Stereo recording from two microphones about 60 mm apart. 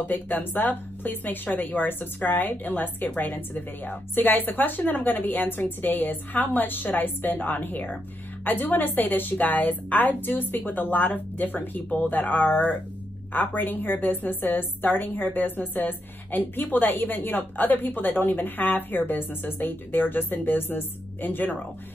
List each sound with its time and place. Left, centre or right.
0.0 s a woman's voice: left